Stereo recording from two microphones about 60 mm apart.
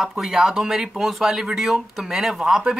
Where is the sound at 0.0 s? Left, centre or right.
Centre.